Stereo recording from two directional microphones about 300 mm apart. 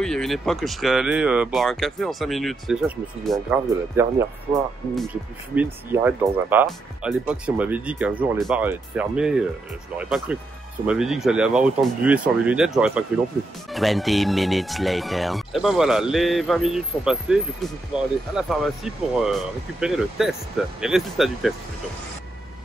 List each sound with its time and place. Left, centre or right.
0.0 s speech: centre
5.6 s speech: centre